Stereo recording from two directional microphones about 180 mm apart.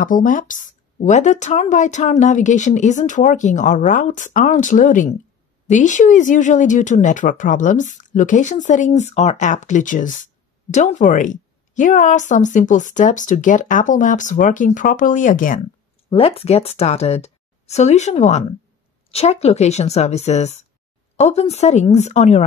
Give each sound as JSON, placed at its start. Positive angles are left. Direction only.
{"t": 0.0, "sound": "speech", "side_deg": 50}
{"t": 16.1, "sound": "a woman's voice", "side_deg": 35}